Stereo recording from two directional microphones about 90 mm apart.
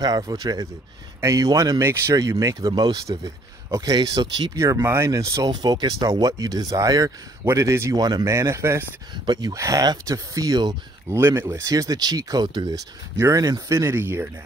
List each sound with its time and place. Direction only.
0.0 s speech: 45° right (ahead or behind)
1.8 s speech: 30° right (ahead or behind)
2.7 s speech: 55° right (ahead or behind)
4.6 s speech: 30° right (ahead or behind)
5.5 s speech: 50° right (ahead or behind); by 7.9 s 30° right (ahead or behind)
7.9 s speech: 45° right (ahead or behind)
9.1 s speech: 55° right (ahead or behind)
9.6 s speech: 40° right (ahead or behind)
11.1 s speech: 30° right (ahead or behind)